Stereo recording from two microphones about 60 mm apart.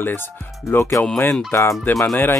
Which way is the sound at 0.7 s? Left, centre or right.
Left.